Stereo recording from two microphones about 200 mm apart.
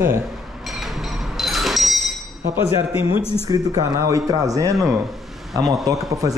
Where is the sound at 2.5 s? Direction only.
15° right (ahead or behind).